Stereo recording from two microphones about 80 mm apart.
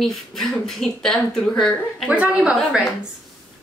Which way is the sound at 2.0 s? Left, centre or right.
Centre.